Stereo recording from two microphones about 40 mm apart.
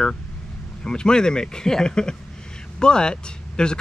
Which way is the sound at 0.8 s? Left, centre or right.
Centre.